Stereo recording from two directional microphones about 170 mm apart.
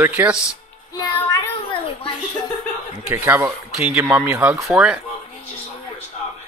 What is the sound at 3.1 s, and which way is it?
Speech, 10° right (ahead or behind).